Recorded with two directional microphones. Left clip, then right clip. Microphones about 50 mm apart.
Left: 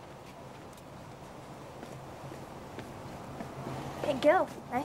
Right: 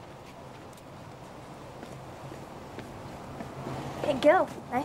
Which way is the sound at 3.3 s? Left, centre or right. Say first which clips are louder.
Right 3 dB; left.